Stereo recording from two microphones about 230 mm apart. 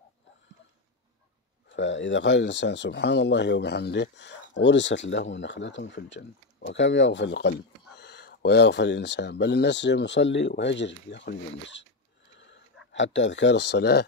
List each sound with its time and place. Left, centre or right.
1.7 s speech: left
12.9 s speech: left